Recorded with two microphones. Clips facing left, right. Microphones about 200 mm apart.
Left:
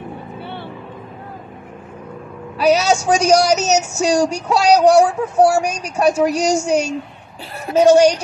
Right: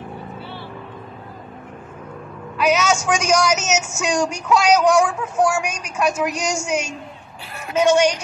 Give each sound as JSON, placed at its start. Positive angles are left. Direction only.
{"t": 2.5, "sound": "a woman's voice", "side_deg": 35}